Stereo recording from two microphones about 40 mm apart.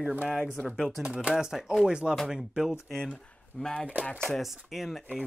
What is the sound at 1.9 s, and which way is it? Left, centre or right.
Speech, right.